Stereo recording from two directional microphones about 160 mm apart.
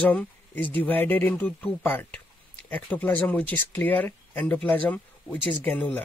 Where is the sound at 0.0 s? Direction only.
10° left (ahead or behind).